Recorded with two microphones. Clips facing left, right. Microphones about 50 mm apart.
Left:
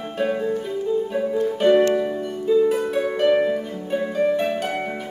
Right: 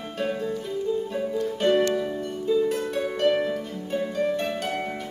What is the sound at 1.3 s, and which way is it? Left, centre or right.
Harp, left.